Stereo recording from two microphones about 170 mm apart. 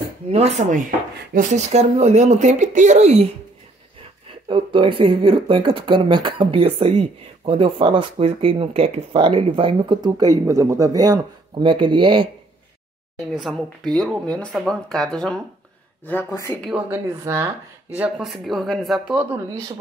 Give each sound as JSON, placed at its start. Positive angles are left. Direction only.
{"t": 0.3, "sound": "speech", "side_deg": -40}
{"t": 4.5, "sound": "speech", "side_deg": -30}
{"t": 13.3, "sound": "speech", "side_deg": 0}
{"t": 16.7, "sound": "speech", "side_deg": -15}
{"t": 17.9, "sound": "speech", "side_deg": -5}